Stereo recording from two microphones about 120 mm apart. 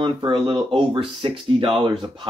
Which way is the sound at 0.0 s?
40° right (ahead or behind).